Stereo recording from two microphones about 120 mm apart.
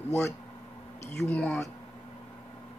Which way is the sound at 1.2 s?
15° left (ahead or behind).